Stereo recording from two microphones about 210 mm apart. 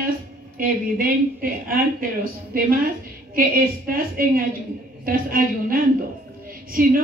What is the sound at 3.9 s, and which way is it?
A woman's voice, 45° right (ahead or behind).